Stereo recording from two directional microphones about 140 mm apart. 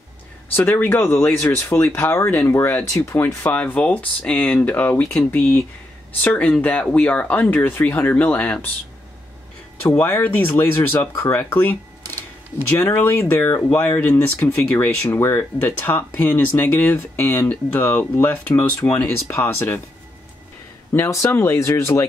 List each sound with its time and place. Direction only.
0.6 s speech: 15° left (ahead or behind)
9.8 s speech: 15° left (ahead or behind)
20.9 s speech: 20° left (ahead or behind)